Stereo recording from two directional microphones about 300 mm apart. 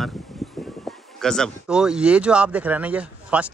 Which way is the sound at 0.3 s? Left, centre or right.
Centre.